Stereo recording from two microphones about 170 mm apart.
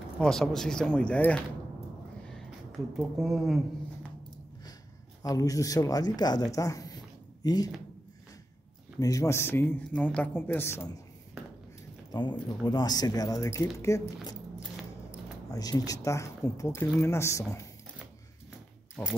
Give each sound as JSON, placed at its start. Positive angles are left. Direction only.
{"t": 0.2, "sound": "speech", "side_deg": 5}
{"t": 3.0, "sound": "speech", "side_deg": 0}
{"t": 5.2, "sound": "speech", "side_deg": 20}
{"t": 9.0, "sound": "speech", "side_deg": 20}
{"t": 12.1, "sound": "speech", "side_deg": 25}
{"t": 19.0, "sound": "speech", "side_deg": 10}